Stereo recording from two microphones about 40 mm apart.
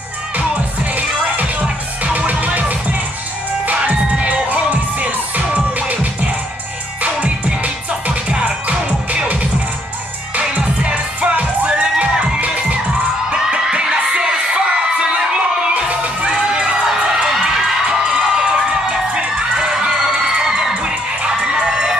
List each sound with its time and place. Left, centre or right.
0.9 s music: right
3.6 s music: right
7.0 s music: right
10.4 s music: right
15.9 s music: right
16.3 s crowd: centre
18.2 s music: centre
21.6 s crowd: centre